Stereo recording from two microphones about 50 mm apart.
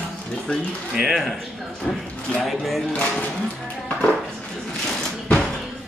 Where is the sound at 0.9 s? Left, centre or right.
Centre.